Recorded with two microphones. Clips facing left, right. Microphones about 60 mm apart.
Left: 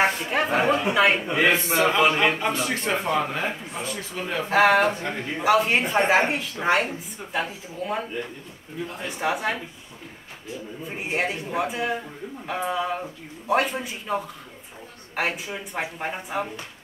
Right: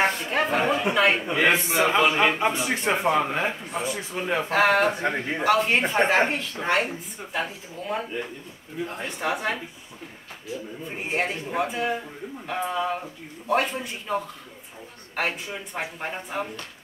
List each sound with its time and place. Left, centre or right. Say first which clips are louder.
0.0 s a woman's voice: left 1 dB; centre
1.5 s a man's voice: even; centre
4.5 s a woman's voice: left 3 dB; centre
5.0 s speech: right 3 dB; right
5.4 s a woman's voice: left 1 dB; centre
10.9 s a woman's voice: left 1 dB; centre